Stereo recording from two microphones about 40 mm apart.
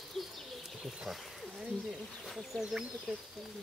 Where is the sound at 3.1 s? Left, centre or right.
Centre.